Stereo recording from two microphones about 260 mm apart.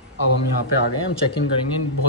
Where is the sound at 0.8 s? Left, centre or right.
Left.